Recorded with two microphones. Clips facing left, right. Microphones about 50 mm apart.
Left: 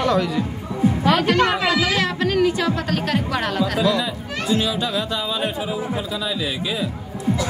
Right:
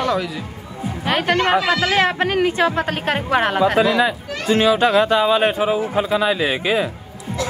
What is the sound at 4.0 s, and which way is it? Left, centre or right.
Speech, right.